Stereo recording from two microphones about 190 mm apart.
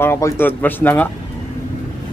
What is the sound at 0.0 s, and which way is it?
Speech, 10° left (ahead or behind).